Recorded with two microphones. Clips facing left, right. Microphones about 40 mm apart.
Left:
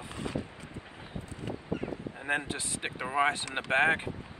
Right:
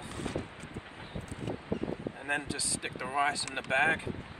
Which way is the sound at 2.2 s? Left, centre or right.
Left.